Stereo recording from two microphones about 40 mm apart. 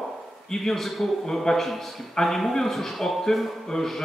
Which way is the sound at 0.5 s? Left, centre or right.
Centre.